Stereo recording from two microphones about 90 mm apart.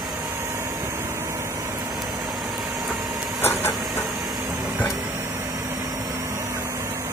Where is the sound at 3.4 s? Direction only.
25° left (ahead or behind).